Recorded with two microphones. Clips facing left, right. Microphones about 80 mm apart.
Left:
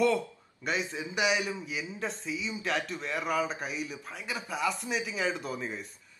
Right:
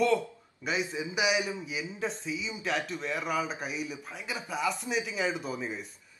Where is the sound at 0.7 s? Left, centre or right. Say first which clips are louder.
Right 1 dB; centre.